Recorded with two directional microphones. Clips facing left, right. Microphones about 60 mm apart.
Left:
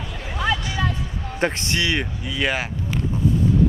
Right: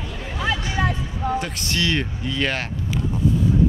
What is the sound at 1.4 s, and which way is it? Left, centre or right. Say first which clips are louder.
Speech: left 3 dB; left.